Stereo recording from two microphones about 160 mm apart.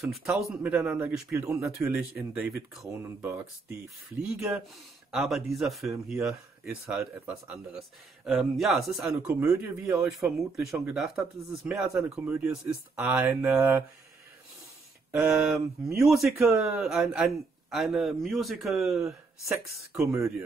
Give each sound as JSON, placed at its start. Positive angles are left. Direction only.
{"t": 0.0, "sound": "speech", "side_deg": 0}
{"t": 4.3, "sound": "a man's voice", "side_deg": -5}
{"t": 9.6, "sound": "speech", "side_deg": -15}
{"t": 10.0, "sound": "a man's voice", "side_deg": -5}
{"t": 15.0, "sound": "a man's voice", "side_deg": -5}
{"t": 20.1, "sound": "speech", "side_deg": -20}